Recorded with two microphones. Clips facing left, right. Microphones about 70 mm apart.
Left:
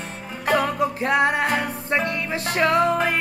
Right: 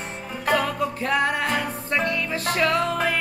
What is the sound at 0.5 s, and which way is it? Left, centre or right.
Music, centre.